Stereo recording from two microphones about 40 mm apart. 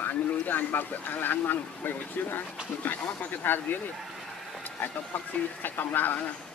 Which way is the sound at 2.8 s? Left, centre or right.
Left.